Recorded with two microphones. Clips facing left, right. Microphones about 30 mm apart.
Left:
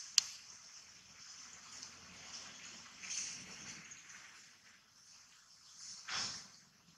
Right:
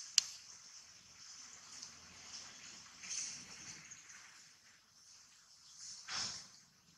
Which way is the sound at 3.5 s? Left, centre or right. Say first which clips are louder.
Left 2 dB; left.